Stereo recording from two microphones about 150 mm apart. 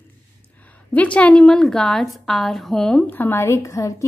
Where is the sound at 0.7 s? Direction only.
10° left (ahead or behind).